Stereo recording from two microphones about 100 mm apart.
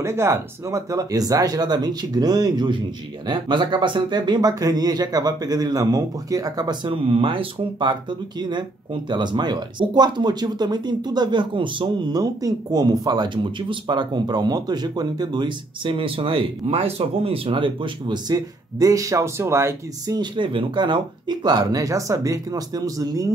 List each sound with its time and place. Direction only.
0.0 s speech: 25° right (ahead or behind)
20.2 s speech: 55° right (ahead or behind); by 23.3 s 35° right (ahead or behind)